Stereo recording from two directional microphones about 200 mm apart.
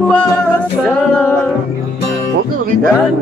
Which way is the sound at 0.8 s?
5° left (ahead or behind).